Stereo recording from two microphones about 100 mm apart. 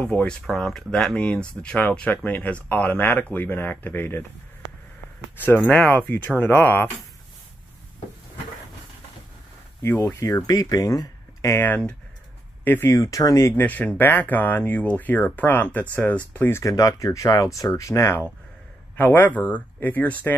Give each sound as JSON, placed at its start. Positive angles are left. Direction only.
{"t": 0.0, "sound": "speech", "side_deg": 10}
{"t": 5.4, "sound": "speech", "side_deg": 20}
{"t": 10.0, "sound": "speech", "side_deg": 30}
{"t": 11.6, "sound": "speech", "side_deg": 15}